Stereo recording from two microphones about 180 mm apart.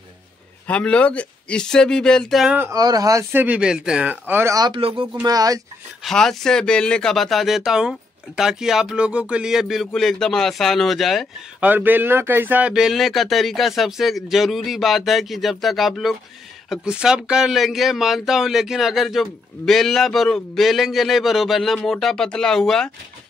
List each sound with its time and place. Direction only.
0.7 s speech: 5° left (ahead or behind)
2.7 s speech: 20° right (ahead or behind)
6.0 s speech: centre (ahead or behind)
11.7 s speech: 10° right (ahead or behind)